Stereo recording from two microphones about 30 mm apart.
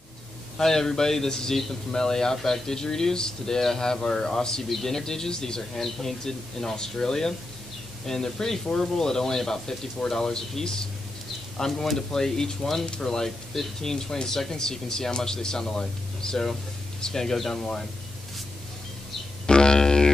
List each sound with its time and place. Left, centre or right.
0.6 s a man's voice: centre
4.6 s a man's voice: centre
19.4 s music: left